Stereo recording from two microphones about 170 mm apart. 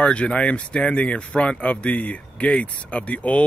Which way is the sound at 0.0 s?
5° left (ahead or behind).